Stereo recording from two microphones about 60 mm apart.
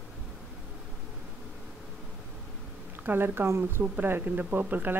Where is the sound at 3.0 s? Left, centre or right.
Right.